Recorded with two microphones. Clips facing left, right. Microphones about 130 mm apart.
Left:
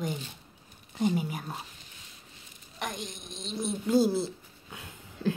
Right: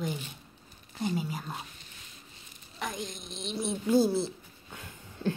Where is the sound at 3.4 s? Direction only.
5° right (ahead or behind).